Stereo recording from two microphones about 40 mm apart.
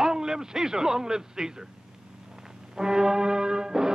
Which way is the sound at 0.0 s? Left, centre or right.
Centre.